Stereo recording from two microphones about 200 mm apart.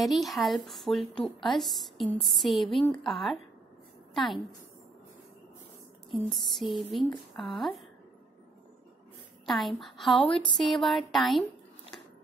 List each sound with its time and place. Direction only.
0.0 s a woman's voice: centre (ahead or behind)
6.0 s a woman's voice: centre (ahead or behind)
9.5 s a woman's voice: centre (ahead or behind)
10.3 s speech: 25° left (ahead or behind)
10.7 s a woman's voice: centre (ahead or behind)